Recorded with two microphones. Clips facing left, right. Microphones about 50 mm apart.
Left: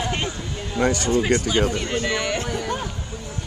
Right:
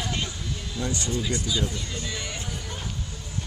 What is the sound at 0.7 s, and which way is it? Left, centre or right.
Speech, left.